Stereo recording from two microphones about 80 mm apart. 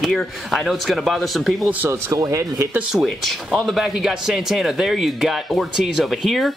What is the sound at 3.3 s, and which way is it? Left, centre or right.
Speech, centre.